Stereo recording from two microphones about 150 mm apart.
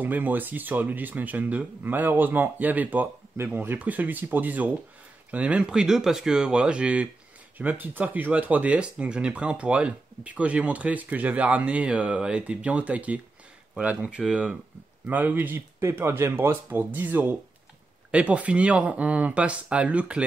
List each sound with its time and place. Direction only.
0.0 s speech: 10° right (ahead or behind)